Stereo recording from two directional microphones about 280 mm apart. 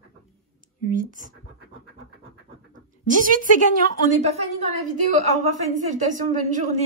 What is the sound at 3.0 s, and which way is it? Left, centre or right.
A woman's voice, right.